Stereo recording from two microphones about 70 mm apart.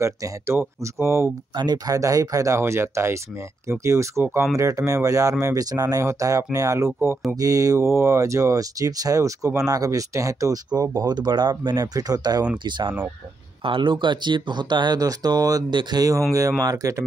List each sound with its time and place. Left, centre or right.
0.0 s speech: right
1.5 s speech: right
2.0 s speech: right
2.6 s speech: right
6.0 s speech: right
10.7 s speech: right
13.9 s speech: right
16.3 s speech: right